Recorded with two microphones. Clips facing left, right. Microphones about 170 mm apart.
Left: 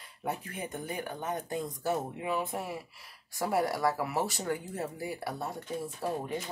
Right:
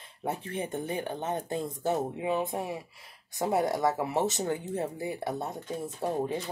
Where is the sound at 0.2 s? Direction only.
30° right (ahead or behind).